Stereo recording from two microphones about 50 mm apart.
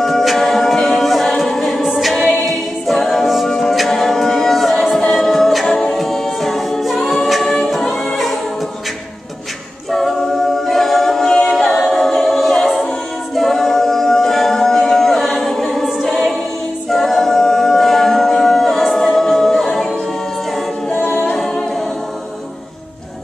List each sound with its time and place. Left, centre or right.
0.0 s a capella: centre
7.7 s music: centre
9.8 s a capella: centre
20.9 s a capella: left